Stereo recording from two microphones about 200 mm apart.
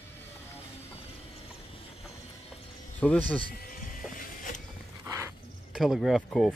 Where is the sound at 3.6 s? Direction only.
45° left (ahead or behind).